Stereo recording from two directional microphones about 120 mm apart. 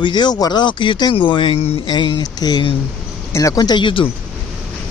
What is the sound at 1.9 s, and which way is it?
Speech, 40° left (ahead or behind).